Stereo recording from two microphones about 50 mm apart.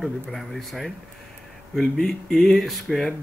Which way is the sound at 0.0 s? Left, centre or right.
Centre.